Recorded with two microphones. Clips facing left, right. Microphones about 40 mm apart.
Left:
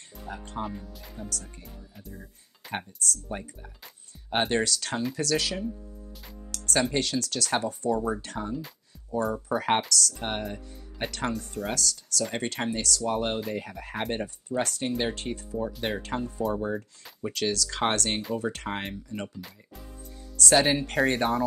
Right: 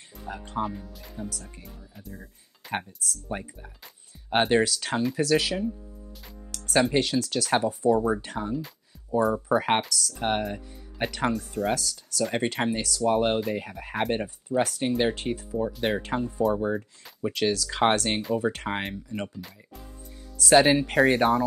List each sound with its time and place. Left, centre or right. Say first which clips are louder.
0.3 s speech: right 4 dB; centre
3.3 s speech: right 2 dB; centre
6.7 s speech: right 4 dB; centre
11.3 s speech: right 5 dB; centre
11.7 s speech: right 2 dB; centre